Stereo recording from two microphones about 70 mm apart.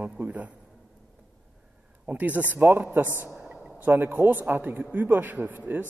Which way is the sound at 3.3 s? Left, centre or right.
Centre.